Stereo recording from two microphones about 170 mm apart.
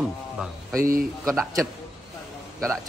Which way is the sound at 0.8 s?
55° right (ahead or behind).